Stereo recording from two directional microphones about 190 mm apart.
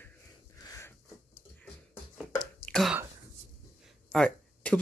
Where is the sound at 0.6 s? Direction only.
15° left (ahead or behind).